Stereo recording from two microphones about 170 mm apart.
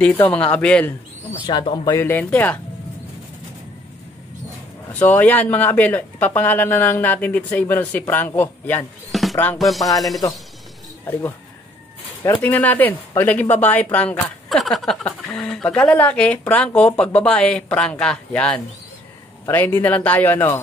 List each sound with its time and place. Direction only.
0.0 s speech: 10° left (ahead or behind)
1.4 s speech: 25° left (ahead or behind)
2.0 s speech: 15° left (ahead or behind)
4.9 s speech: 10° left (ahead or behind)
9.1 s music: centre (ahead or behind)
12.4 s speech: 10° left (ahead or behind)